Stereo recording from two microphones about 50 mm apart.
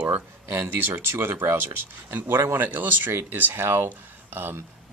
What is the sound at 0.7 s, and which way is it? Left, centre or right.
Speech, right.